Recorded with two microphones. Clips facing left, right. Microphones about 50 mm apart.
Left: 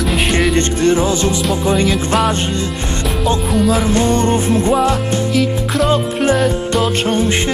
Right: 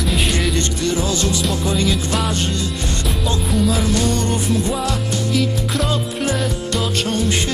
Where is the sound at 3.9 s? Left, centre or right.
Left.